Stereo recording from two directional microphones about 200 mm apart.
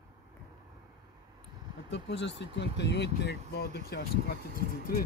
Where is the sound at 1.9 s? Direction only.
60° left (ahead or behind).